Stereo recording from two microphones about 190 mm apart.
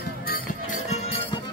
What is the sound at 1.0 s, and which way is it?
Music, 30° left (ahead or behind).